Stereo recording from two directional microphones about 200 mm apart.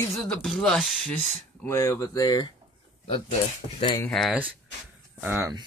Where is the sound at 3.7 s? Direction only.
25° left (ahead or behind).